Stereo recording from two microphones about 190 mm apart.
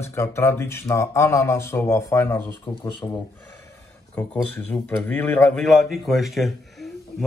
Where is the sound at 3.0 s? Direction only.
25° left (ahead or behind).